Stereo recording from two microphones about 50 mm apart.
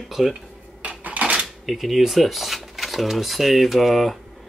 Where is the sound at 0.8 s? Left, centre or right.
Right.